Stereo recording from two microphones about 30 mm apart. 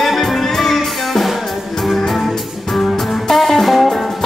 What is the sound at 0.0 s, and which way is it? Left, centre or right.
Music, centre.